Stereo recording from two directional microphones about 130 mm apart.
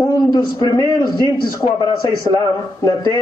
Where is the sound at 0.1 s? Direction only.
30° left (ahead or behind).